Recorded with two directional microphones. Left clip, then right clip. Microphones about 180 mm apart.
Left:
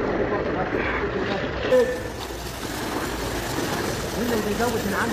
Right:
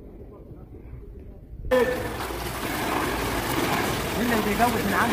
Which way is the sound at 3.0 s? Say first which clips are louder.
Right 1 dB; 35° right (ahead or behind).